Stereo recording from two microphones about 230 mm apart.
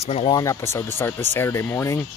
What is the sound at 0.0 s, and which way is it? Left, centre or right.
Speech, left.